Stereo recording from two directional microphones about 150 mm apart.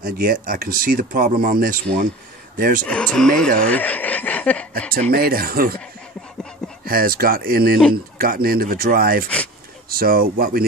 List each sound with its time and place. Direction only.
0.0 s speech: 70° right (ahead or behind)
2.5 s speech: 70° right (ahead or behind)
2.8 s speech: 5° left (ahead or behind)
5.1 s speech: 85° right
6.9 s speech: 80° right